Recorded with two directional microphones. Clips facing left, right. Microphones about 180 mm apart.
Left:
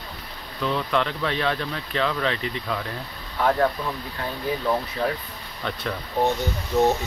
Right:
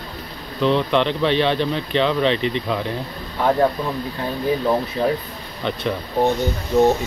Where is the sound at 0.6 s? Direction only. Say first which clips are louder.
Right 6 dB; 25° right (ahead or behind).